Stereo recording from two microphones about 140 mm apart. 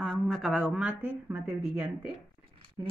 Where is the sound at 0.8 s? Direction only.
10° right (ahead or behind).